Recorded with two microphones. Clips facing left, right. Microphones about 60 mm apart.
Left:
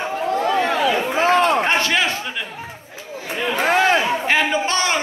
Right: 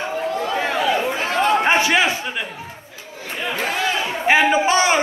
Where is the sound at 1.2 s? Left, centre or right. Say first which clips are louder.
Left 4 dB; left.